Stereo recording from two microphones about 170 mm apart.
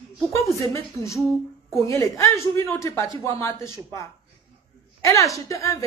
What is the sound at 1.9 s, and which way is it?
A woman's voice, 15° left (ahead or behind).